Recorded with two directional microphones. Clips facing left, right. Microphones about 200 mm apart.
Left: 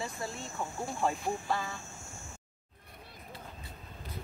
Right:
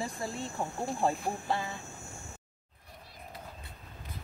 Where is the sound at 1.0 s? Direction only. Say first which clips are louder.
Right 2 dB; 35° right (ahead or behind).